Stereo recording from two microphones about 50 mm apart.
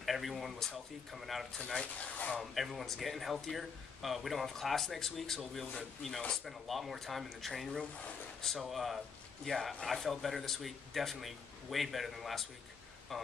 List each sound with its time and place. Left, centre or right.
0.0 s speech: centre
2.0 s speech: left
2.5 s speech: centre